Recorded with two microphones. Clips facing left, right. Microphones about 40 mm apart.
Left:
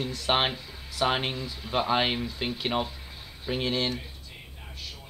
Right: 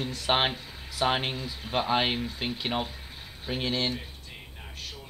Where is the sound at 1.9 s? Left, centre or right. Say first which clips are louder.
Even; centre.